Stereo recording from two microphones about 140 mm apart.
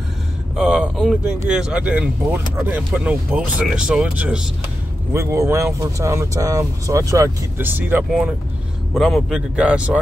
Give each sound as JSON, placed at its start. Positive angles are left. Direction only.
{"t": 0.6, "sound": "a sound", "side_deg": -5}
{"t": 1.5, "sound": "speech", "side_deg": -5}
{"t": 5.1, "sound": "speech", "side_deg": -20}
{"t": 8.9, "sound": "speech", "side_deg": 0}